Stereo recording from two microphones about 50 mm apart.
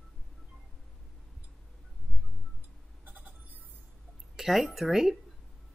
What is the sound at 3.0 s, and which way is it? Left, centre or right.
Music, right.